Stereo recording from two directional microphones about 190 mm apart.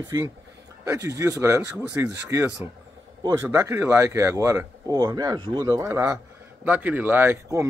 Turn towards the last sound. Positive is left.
turn(degrees=-15)  # may be behind; listen again after turning